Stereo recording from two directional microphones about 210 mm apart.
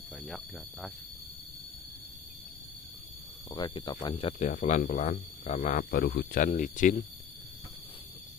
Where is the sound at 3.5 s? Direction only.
20° left (ahead or behind).